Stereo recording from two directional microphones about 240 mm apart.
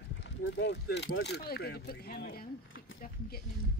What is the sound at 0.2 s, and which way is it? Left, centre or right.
Speech, left.